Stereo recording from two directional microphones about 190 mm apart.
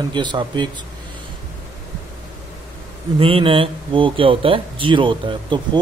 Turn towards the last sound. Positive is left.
turn(degrees=-25)  # may be behind; listen again after turning